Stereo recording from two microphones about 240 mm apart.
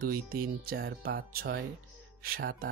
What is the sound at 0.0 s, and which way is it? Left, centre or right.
Speech, right.